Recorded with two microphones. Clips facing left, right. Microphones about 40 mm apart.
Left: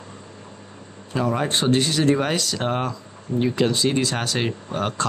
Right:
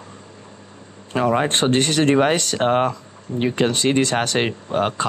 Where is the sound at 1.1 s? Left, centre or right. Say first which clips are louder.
Right 4 dB; right.